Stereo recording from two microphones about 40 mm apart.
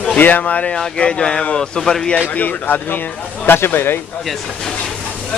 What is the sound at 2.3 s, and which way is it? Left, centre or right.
Speech, left.